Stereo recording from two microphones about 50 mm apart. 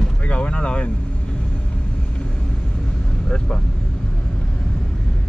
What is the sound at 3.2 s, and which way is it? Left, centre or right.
Speech, centre.